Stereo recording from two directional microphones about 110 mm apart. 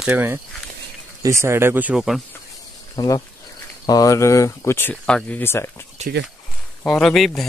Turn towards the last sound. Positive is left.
turn(degrees=0)  # may be behind; listen again after turning